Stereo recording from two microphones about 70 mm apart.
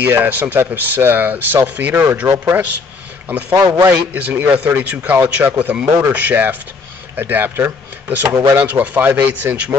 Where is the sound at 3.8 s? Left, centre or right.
Right.